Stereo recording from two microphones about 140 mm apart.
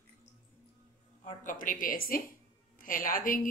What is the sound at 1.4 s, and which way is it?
Speech, 70° left (ahead or behind).